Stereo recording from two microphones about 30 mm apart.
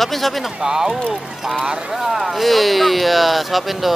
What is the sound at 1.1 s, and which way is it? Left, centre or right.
Speech, centre.